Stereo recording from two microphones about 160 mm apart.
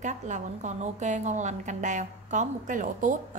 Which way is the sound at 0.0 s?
50° right (ahead or behind).